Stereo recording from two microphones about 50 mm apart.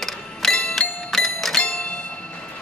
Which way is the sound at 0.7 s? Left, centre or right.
Centre.